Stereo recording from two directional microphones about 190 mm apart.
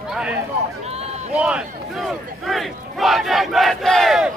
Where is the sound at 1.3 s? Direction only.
5° right (ahead or behind).